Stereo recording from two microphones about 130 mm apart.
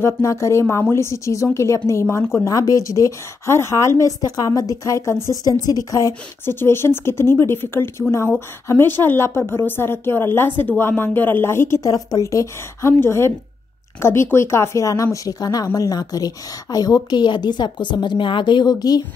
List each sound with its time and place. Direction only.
0.0 s a woman's voice: 25° left (ahead or behind)